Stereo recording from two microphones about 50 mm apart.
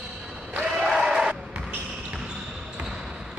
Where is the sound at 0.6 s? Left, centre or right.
Centre.